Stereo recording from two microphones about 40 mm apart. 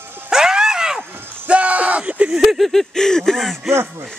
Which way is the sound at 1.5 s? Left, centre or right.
Right.